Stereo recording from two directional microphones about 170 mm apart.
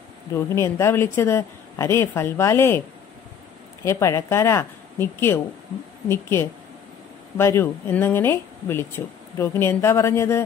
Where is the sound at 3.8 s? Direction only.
15° left (ahead or behind).